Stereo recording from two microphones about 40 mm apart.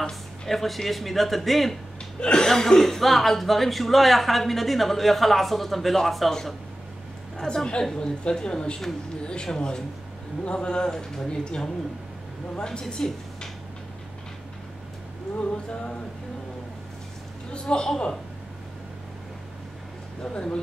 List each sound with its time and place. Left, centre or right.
0.5 s a man's voice: centre
2.1 s speech: left
2.4 s a man's voice: centre
7.3 s a woman's voice: centre
15.5 s speech: left
17.5 s a woman's voice: left
20.3 s speech: left